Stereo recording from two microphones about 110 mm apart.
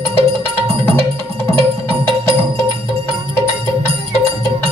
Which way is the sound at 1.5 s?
55° right (ahead or behind).